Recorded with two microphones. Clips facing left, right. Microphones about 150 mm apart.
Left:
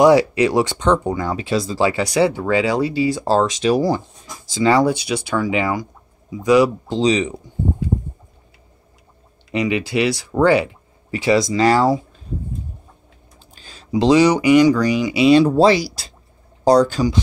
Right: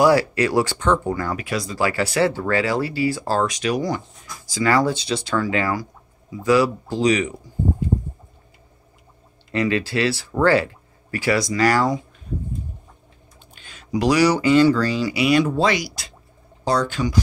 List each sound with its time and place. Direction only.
0.0 s speech: 20° left (ahead or behind)
9.5 s speech: 15° left (ahead or behind)
13.6 s speech: 35° left (ahead or behind)